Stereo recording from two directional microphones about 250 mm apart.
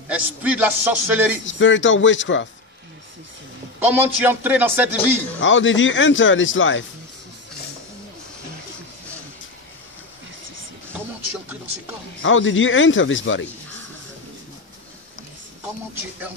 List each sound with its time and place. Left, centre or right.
0.1 s a man's voice: centre
1.4 s speech: left
3.8 s a man's voice: centre
5.4 s speech: left
12.2 s speech: left